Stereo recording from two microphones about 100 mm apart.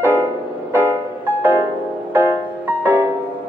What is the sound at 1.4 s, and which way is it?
Music, 20° right (ahead or behind).